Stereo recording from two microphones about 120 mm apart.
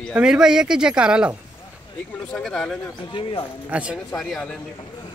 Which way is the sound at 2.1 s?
5° left (ahead or behind).